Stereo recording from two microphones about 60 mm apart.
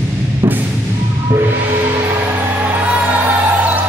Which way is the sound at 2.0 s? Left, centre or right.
Right.